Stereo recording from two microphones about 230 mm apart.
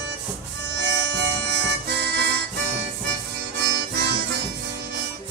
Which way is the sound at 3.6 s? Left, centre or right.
Right.